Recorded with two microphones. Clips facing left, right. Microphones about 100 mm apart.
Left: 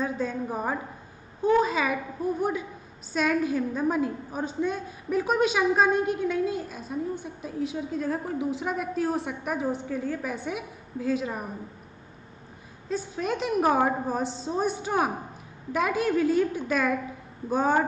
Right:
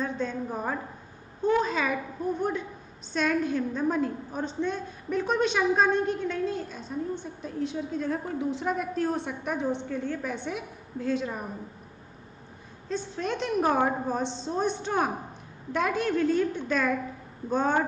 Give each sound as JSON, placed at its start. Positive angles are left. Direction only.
{"t": 0.0, "sound": "a woman's voice", "side_deg": 5}
{"t": 12.8, "sound": "a woman's voice", "side_deg": 5}